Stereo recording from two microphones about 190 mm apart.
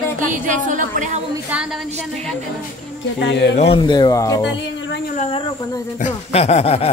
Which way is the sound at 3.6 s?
25° left (ahead or behind).